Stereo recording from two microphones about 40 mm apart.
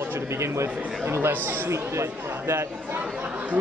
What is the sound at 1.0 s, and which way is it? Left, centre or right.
Speech, right.